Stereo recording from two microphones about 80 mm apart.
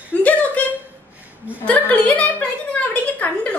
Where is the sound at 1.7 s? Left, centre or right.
Centre.